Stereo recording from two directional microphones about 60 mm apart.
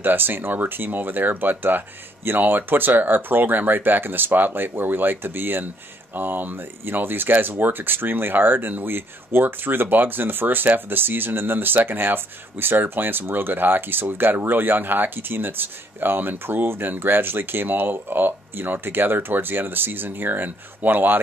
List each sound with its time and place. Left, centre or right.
0.0 s speech: right